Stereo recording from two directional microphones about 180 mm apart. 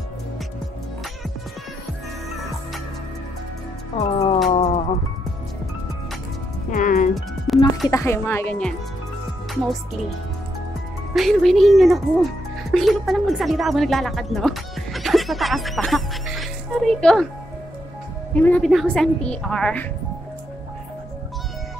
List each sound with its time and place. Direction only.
4.0 s music: 35° left (ahead or behind)
6.7 s music: 45° left (ahead or behind)
7.4 s music: centre (ahead or behind)
7.9 s speech: 15° left (ahead or behind)
11.1 s a woman's voice: centre (ahead or behind)
18.3 s a woman's voice: 10° left (ahead or behind)